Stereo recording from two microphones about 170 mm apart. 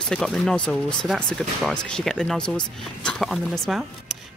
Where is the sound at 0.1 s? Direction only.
5° left (ahead or behind).